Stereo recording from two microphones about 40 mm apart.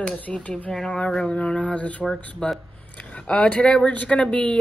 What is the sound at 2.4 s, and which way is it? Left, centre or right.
Speech, left.